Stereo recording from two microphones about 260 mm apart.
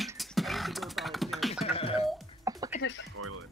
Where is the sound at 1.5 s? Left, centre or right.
Left.